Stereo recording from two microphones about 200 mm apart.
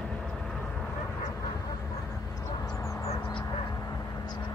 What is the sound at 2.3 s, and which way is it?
Vehicle, 20° left (ahead or behind).